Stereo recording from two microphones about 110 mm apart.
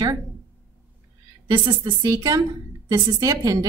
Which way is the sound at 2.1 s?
35° right (ahead or behind).